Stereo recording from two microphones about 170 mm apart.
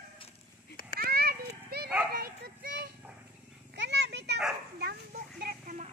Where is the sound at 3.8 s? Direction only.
90° right.